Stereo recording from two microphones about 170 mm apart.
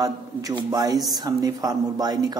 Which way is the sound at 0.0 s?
20° right (ahead or behind).